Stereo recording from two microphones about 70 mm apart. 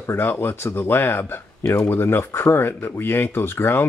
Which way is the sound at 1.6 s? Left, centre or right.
Left.